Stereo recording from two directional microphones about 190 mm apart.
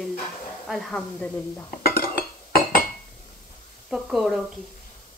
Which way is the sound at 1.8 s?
55° left (ahead or behind).